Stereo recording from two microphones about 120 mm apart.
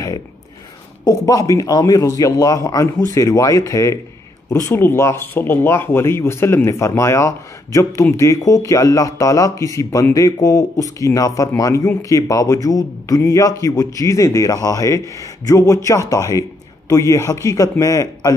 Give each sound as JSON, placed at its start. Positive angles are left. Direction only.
{"t": 1.0, "sound": "speech", "side_deg": 30}